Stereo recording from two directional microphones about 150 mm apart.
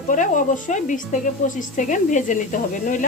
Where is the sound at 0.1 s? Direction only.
55° left (ahead or behind).